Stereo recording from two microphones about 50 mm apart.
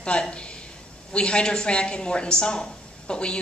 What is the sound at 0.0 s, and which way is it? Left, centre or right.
A woman's voice, left.